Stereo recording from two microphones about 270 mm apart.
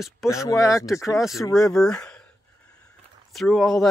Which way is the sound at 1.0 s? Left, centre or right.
Centre.